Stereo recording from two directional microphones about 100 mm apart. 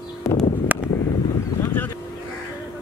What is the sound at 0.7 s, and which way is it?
Vehicle, 15° right (ahead or behind).